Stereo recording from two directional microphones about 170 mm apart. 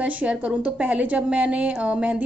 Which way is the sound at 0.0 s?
10° right (ahead or behind).